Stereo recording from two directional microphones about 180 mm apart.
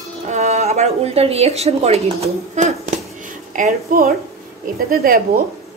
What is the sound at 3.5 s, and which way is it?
Speech, 50° right (ahead or behind).